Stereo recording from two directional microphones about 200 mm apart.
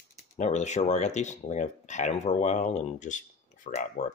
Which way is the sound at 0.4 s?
35° left (ahead or behind).